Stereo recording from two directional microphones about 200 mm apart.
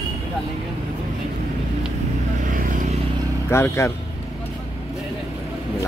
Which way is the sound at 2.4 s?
40° right (ahead or behind).